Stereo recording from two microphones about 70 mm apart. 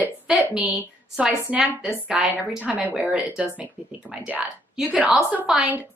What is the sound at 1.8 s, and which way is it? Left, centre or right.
Speech, centre.